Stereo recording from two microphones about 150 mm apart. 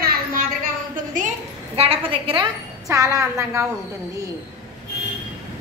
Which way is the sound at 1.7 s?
40° right (ahead or behind).